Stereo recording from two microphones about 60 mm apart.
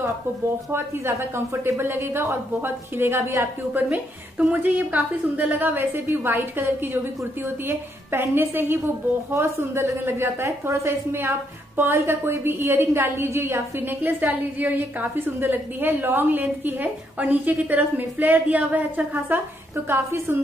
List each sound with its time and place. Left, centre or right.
0.7 s speech: right
4.4 s a woman's voice: right
19.7 s speech: right